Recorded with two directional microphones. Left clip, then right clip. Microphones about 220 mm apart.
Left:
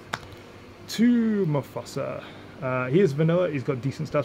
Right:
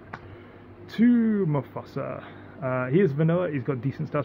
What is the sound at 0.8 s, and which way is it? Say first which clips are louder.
Speech: even; centre (ahead or behind).